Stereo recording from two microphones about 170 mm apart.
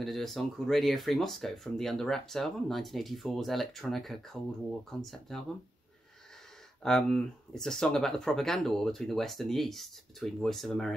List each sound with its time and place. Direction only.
0.0 s speech: centre (ahead or behind)
6.8 s speech: 5° left (ahead or behind)